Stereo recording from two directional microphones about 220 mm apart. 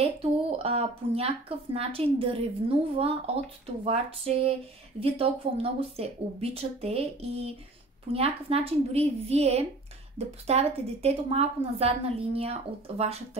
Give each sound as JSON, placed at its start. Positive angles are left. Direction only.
{"t": 0.2, "sound": "a woman's voice", "side_deg": -25}